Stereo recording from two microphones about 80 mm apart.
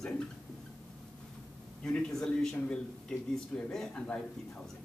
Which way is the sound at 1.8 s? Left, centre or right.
Centre.